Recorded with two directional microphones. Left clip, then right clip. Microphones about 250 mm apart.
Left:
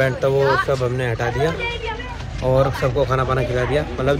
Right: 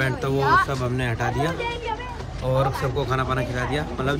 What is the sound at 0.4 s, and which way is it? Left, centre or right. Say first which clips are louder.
Speech: right 1 dB; right.